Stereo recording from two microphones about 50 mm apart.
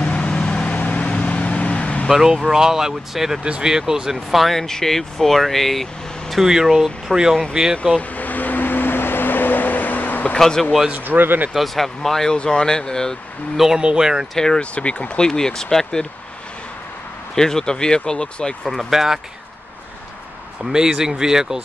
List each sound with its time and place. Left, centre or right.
0.0 s vehicle: left
2.0 s speech: centre
7.7 s speech: centre
8.2 s vehicle: left
10.4 s speech: centre
11.1 s speech: right
11.5 s speech: centre
13.7 s speech: centre
14.3 s speech: centre
14.6 s speech: left
17.4 s speech: centre
18.9 s speech: centre
20.7 s speech: centre